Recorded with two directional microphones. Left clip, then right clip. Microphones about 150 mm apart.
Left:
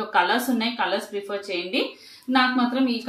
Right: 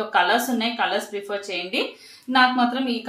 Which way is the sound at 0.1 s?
15° right (ahead or behind).